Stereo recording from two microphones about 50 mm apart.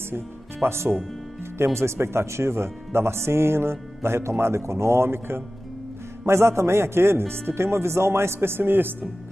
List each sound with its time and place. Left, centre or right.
0.1 s speech: right
6.2 s speech: right